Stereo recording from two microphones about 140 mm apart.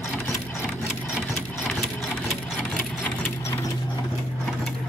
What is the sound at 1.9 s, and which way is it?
Sewing machine, centre (ahead or behind).